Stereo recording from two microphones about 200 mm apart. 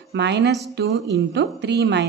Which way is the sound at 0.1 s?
60° right (ahead or behind).